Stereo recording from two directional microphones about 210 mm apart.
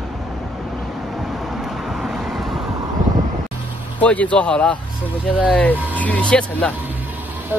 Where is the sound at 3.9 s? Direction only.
5° left (ahead or behind).